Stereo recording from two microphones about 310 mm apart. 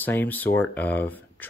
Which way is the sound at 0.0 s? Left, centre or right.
Centre.